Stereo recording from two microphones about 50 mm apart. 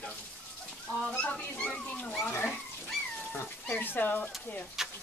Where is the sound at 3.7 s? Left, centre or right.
Left.